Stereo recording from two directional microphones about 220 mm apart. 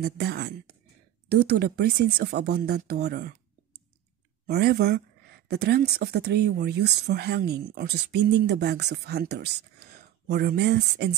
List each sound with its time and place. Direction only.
0.0 s speech: 45° right (ahead or behind)
4.5 s speech: 45° right (ahead or behind)